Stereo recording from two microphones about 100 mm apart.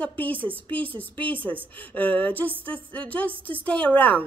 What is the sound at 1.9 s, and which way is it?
A woman's voice, 15° left (ahead or behind).